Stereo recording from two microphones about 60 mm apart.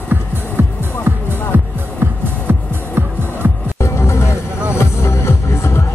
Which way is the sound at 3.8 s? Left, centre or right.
Left.